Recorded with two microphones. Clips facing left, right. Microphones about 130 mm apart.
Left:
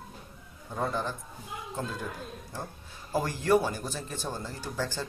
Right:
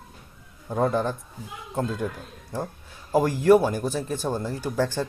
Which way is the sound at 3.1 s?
55° right (ahead or behind).